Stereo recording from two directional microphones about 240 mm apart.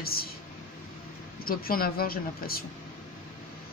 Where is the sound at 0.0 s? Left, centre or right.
Left.